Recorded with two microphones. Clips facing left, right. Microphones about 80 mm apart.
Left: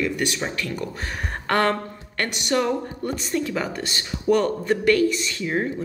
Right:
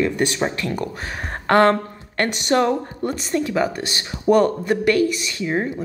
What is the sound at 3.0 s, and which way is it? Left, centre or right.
Speech, centre.